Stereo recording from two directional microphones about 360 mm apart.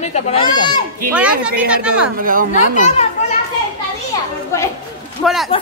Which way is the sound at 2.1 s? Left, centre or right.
Right.